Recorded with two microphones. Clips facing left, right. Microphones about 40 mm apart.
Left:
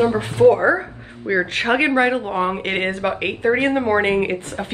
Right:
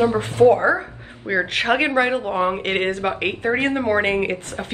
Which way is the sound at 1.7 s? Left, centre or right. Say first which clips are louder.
Left 2 dB; centre.